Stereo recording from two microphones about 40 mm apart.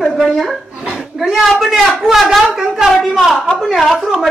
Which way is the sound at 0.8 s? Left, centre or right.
Centre.